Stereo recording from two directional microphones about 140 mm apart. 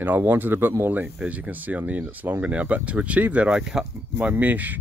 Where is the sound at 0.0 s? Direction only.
15° right (ahead or behind).